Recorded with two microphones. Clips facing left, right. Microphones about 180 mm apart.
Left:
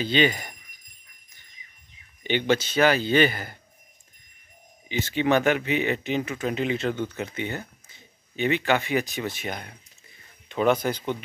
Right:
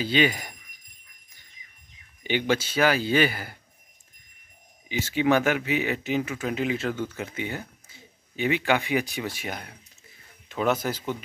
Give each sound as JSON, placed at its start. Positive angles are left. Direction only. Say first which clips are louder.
{"t": 0.0, "sound": "speech", "louder": "left 1 dB", "side_deg": -5}
{"t": 2.2, "sound": "speech", "louder": "left 2 dB", "side_deg": -10}
{"t": 4.8, "sound": "speech", "louder": "right 1 dB", "side_deg": -10}